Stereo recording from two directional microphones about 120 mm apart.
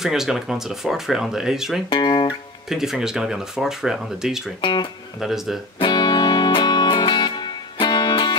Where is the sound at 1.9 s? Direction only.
40° left (ahead or behind).